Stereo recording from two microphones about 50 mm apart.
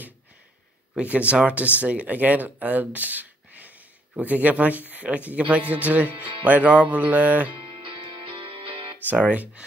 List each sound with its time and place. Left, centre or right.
1.0 s speech: right
5.7 s music: right
9.2 s speech: right